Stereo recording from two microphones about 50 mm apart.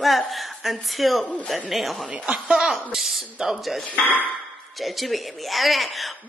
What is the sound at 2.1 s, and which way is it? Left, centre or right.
Speech, centre.